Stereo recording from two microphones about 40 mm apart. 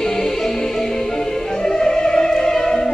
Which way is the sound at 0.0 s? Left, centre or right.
Centre.